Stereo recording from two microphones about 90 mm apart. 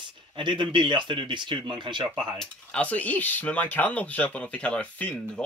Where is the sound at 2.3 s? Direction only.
10° left (ahead or behind).